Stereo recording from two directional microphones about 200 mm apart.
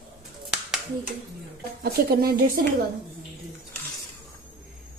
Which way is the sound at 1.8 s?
50° right (ahead or behind).